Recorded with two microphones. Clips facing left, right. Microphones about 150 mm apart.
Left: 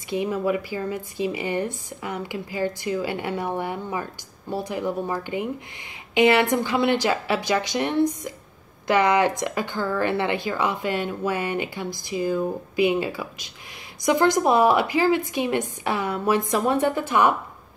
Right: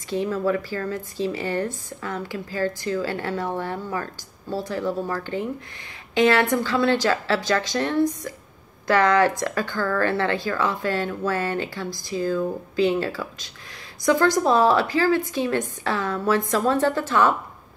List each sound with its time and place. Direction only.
0.1 s speech: 15° left (ahead or behind)